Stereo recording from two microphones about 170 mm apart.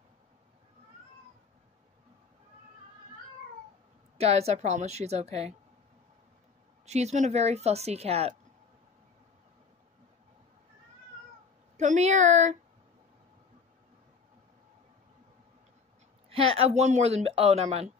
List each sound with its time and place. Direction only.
4.2 s speech: 40° right (ahead or behind)
6.9 s speech: 40° right (ahead or behind)
11.7 s a woman's voice: 45° right (ahead or behind)
16.3 s speech: 35° right (ahead or behind)